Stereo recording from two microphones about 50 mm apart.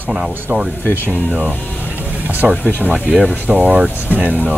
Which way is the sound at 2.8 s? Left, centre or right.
Right.